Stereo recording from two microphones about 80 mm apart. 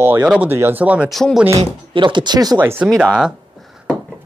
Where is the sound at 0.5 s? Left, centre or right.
Right.